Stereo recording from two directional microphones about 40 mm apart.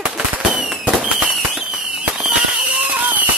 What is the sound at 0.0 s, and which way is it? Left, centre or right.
Fireworks, right.